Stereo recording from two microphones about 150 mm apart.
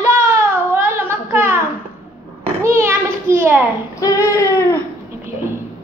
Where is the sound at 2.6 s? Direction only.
15° right (ahead or behind).